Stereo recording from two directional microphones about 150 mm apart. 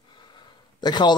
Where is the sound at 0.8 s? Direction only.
30° left (ahead or behind).